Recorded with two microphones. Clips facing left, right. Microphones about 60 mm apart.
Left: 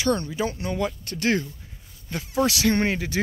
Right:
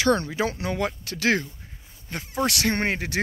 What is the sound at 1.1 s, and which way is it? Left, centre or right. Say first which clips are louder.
Speech: right 1 dB; right.